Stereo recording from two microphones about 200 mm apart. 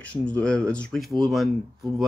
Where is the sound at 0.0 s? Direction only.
5° left (ahead or behind).